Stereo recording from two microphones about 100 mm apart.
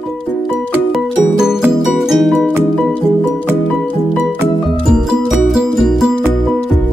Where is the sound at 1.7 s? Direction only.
Centre (ahead or behind).